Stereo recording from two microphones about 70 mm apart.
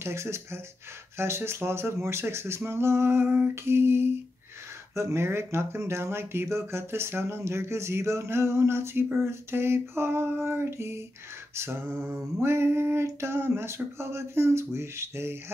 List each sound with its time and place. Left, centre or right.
0.0 s speech: right
11.5 s mantra: right
12.4 s speech: right